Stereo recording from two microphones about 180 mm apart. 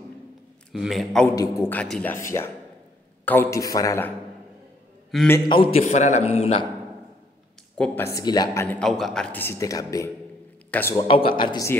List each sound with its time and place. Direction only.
0.7 s a man's voice: centre (ahead or behind)
1.2 s a man's voice: 20° left (ahead or behind)
2.3 s a man's voice: 20° left (ahead or behind)
5.1 s a man's voice: 5° left (ahead or behind)
5.5 s a man's voice: 30° left (ahead or behind)
7.7 s a man's voice: 10° left (ahead or behind)
8.6 s a man's voice: 5° left (ahead or behind)
11.1 s a man's voice: 30° left (ahead or behind)